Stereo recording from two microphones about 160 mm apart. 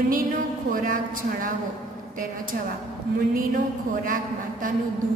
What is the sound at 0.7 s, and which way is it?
Speech, 60° right (ahead or behind).